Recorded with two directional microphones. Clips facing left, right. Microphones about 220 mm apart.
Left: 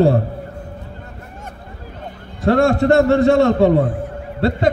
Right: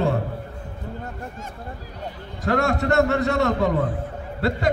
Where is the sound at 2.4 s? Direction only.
30° left (ahead or behind).